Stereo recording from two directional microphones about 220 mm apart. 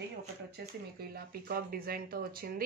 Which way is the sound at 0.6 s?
45° right (ahead or behind).